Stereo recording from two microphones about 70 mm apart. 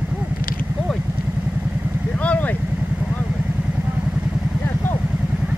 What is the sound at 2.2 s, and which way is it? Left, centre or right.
Vehicle, centre.